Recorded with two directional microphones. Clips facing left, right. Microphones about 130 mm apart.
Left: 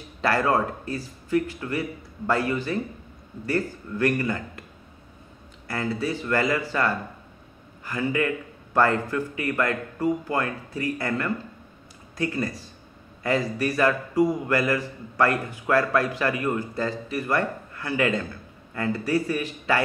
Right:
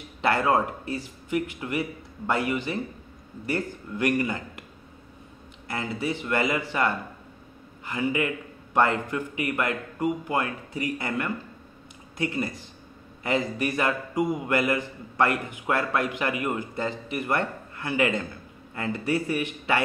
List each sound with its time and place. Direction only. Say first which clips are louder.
0.2 s a man's voice: even; 20° right (ahead or behind)
5.7 s a man's voice: left 2 dB; 20° right (ahead or behind)